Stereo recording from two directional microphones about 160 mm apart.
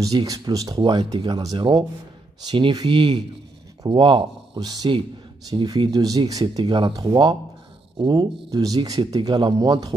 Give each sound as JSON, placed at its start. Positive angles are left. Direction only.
{"t": 0.0, "sound": "speech", "side_deg": -20}